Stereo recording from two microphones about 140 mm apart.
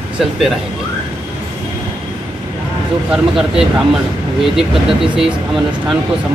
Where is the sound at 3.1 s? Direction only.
5° right (ahead or behind).